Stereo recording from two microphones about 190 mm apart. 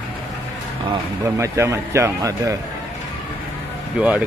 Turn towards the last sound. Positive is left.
turn(degrees=-5)  # may be behind; listen again after turning